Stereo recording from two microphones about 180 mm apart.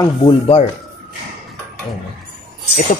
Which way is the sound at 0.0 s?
25° left (ahead or behind).